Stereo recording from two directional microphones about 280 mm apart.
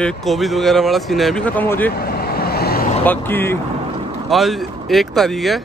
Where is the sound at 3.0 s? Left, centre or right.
Centre.